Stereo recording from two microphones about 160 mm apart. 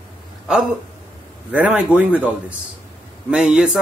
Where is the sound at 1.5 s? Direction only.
10° right (ahead or behind).